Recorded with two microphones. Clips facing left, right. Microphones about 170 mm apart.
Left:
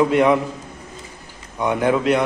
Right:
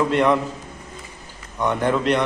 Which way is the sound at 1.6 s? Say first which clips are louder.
Left 2 dB; 10° left (ahead or behind).